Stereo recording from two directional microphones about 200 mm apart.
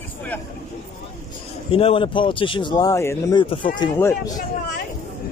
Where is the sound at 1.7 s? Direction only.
30° left (ahead or behind).